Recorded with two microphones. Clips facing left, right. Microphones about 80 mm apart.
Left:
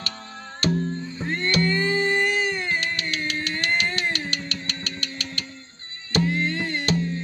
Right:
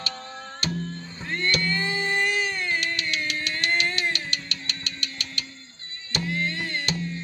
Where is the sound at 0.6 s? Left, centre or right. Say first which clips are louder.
Left 8 dB; left.